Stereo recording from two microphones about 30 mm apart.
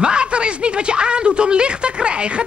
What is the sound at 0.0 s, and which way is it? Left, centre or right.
Speech, right.